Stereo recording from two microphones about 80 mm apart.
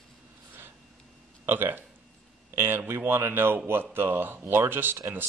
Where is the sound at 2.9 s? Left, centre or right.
Right.